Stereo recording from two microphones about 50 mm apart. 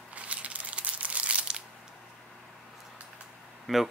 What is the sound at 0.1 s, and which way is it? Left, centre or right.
Crumpling, right.